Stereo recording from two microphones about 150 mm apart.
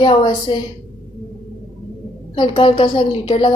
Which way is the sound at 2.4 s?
35° left (ahead or behind).